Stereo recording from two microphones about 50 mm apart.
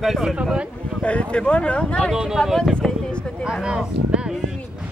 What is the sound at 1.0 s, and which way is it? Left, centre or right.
Speech, left.